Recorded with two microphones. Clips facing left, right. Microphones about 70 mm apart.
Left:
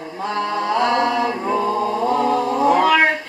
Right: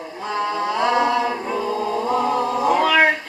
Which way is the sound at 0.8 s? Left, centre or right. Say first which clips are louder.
Even; centre.